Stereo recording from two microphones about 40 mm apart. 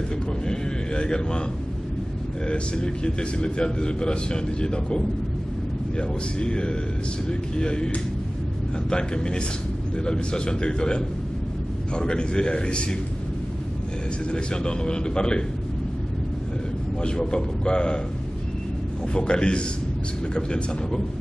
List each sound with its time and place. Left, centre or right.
0.5 s a sound: left
2.4 s a man's voice: left
14.3 s a man's voice: left
17.0 s a man's voice: left
19.1 s a man's voice: left